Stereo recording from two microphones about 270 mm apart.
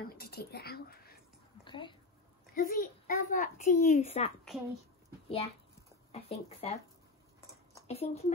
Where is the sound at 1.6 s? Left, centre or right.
Centre.